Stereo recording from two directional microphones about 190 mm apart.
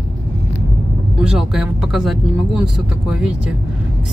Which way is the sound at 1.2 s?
5° right (ahead or behind).